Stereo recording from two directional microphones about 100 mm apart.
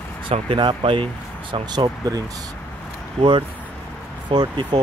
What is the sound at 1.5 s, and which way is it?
Speech, 45° right (ahead or behind).